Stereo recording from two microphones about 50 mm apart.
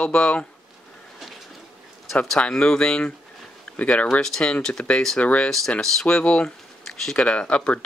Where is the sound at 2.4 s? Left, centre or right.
Centre.